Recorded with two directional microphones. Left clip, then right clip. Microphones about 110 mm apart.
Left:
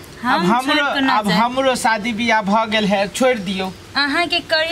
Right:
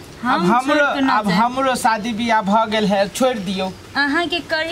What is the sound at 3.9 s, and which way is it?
Speech, 10° left (ahead or behind).